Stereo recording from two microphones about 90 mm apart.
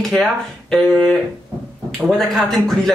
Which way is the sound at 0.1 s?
5° left (ahead or behind).